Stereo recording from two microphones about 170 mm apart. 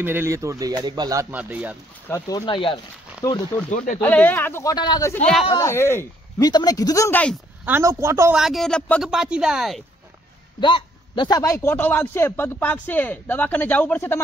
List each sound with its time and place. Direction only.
0.0 s speech: 15° right (ahead or behind)
1.3 s a woman's voice: 10° right (ahead or behind)
2.0 s speech: 20° left (ahead or behind)
3.2 s speech: 20° left (ahead or behind)
3.7 s speech: 45° left (ahead or behind)
4.0 s a man's voice: 10° left (ahead or behind)
4.7 s speech: 25° left (ahead or behind)
5.6 s speech: 15° left (ahead or behind)
7.6 s a woman's voice: 15° right (ahead or behind)
8.4 s speech: centre (ahead or behind)
10.6 s a man's voice: 30° left (ahead or behind)